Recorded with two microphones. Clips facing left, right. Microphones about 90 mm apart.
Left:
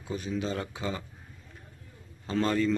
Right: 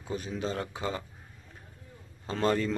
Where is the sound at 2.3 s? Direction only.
30° right (ahead or behind).